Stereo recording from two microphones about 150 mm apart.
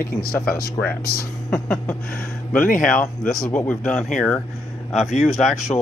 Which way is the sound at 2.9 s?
65° left (ahead or behind).